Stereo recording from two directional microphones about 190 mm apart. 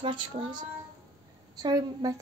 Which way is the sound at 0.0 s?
25° right (ahead or behind).